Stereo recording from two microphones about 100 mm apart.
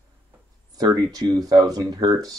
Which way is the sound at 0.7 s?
40° right (ahead or behind).